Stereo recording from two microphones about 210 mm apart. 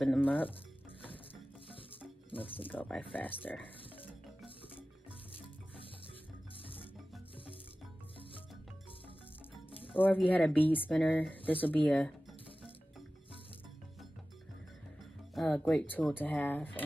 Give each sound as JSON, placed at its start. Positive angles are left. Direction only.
{"t": 0.0, "sound": "speech", "side_deg": 5}
{"t": 2.3, "sound": "speech", "side_deg": 25}
{"t": 2.6, "sound": "speech", "side_deg": 10}
{"t": 3.6, "sound": "music", "side_deg": 10}
{"t": 6.6, "sound": "music", "side_deg": 25}
{"t": 9.9, "sound": "speech", "side_deg": 10}
{"t": 15.3, "sound": "speech", "side_deg": 5}